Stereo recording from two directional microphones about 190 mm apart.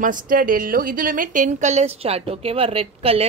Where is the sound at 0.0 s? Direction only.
45° right (ahead or behind).